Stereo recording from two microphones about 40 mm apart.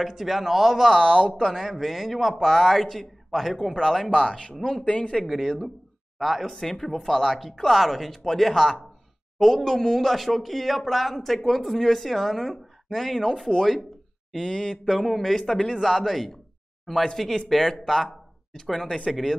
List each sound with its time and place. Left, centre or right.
0.0 s speech: centre
1.0 s speech: centre
1.4 s speech: centre
4.1 s speech: centre
4.6 s speech: centre
4.8 s a man's voice: left
5.2 s speech: centre
15.0 s speech: centre